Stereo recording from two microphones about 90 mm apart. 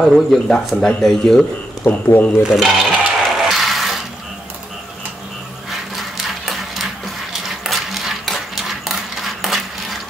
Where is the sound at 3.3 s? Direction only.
Centre (ahead or behind).